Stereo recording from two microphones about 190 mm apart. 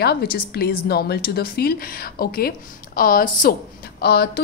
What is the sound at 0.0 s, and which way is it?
A woman's voice, 55° left (ahead or behind).